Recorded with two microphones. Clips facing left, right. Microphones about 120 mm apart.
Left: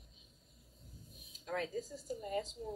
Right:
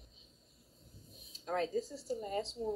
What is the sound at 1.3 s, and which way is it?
Speech, 30° right (ahead or behind).